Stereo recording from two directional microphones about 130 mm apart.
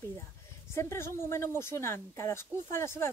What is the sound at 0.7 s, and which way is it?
A woman's voice, 20° left (ahead or behind).